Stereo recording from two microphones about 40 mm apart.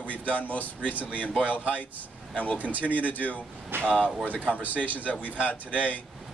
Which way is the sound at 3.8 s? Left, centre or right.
Left.